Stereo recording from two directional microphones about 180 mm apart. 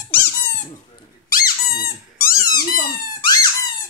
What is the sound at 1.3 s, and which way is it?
Squeak, 55° left (ahead or behind).